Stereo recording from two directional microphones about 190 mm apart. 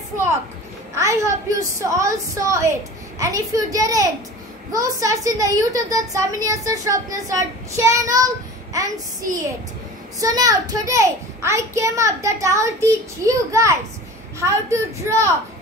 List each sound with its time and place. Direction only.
0.9 s a child's voice: 15° right (ahead or behind)